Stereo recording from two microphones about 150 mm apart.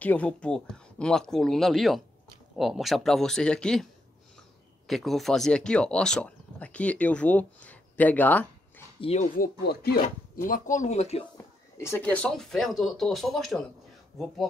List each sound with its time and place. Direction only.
0.0 s speech: 10° left (ahead or behind)
4.8 s speech: centre (ahead or behind)
9.0 s speech: 45° left (ahead or behind)
9.3 s speech: 80° left
10.0 s speech: 65° left (ahead or behind); by 11.2 s 45° left (ahead or behind)
11.3 s speech: 15° left (ahead or behind); by 14.5 s centre (ahead or behind)